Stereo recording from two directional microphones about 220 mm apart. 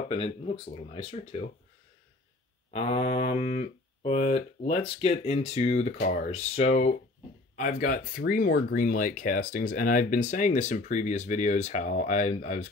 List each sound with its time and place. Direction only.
0.1 s speech: 25° left (ahead or behind)
2.7 s speech: 25° left (ahead or behind)